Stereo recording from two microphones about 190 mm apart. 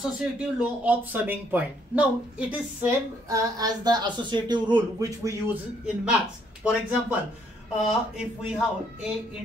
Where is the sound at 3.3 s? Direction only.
20° right (ahead or behind).